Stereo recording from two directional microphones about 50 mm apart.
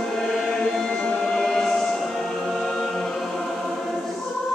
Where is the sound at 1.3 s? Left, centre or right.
Centre.